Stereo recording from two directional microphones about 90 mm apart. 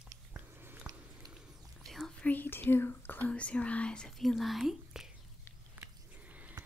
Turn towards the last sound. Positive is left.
turn(degrees=-15)  # may be behind; listen again after turning